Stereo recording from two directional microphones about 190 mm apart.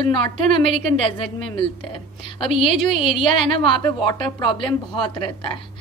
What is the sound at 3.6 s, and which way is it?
A woman's voice, 25° left (ahead or behind).